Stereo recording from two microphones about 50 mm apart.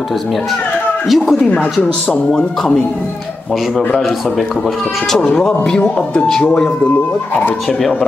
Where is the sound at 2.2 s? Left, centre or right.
Centre.